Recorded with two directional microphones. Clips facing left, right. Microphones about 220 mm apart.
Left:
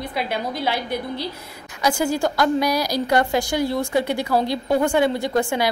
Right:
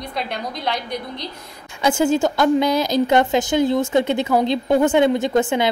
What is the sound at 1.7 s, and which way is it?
Speech, 25° right (ahead or behind).